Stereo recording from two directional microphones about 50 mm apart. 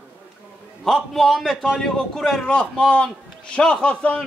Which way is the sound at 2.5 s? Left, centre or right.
Left.